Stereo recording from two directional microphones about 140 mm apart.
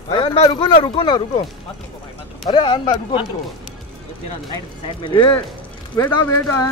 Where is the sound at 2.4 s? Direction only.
30° left (ahead or behind).